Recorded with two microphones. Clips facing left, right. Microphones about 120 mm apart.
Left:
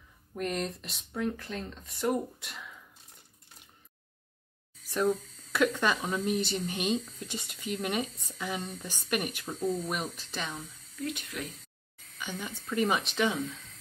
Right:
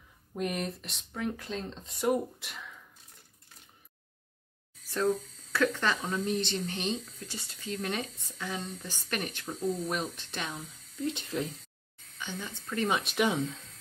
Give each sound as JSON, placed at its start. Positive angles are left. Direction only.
{"t": 0.3, "sound": "speech", "side_deg": -10}
{"t": 1.3, "sound": "speech", "side_deg": -20}
{"t": 2.4, "sound": "speech", "side_deg": 0}
{"t": 4.8, "sound": "speech", "side_deg": 15}
{"t": 9.5, "sound": "speech", "side_deg": 0}
{"t": 11.0, "sound": "speech", "side_deg": -25}
{"t": 12.2, "sound": "speech", "side_deg": 10}
{"t": 12.6, "sound": "speech", "side_deg": 0}
{"t": 13.2, "sound": "speech", "side_deg": -20}